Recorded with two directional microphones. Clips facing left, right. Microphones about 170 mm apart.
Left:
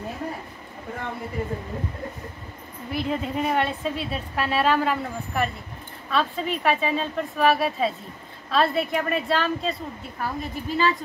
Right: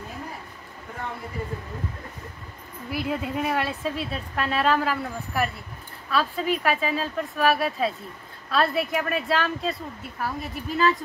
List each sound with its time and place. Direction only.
2.9 s a woman's voice: 5° right (ahead or behind)